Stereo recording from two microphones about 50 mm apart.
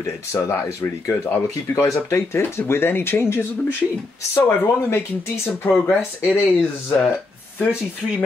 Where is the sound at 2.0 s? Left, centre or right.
Left.